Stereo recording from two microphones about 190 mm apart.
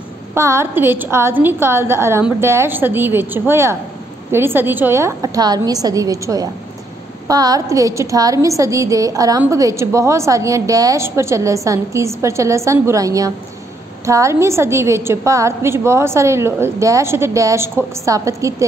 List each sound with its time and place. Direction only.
0.3 s a woman's voice: 15° right (ahead or behind)